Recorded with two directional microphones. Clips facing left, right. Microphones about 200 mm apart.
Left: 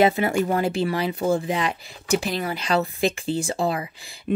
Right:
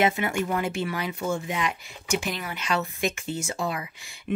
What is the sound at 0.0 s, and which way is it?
Speech, 35° left (ahead or behind).